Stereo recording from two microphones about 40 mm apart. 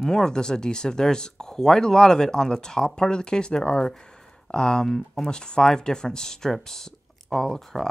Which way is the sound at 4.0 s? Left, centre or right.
Left.